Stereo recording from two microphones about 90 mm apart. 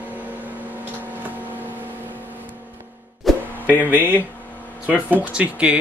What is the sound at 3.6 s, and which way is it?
Speech, 20° right (ahead or behind).